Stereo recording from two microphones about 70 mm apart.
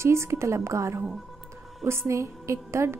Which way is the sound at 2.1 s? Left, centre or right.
Right.